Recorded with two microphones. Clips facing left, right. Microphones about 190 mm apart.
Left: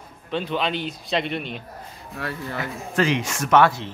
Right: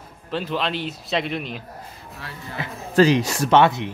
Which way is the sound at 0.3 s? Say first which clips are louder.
Even; centre (ahead or behind).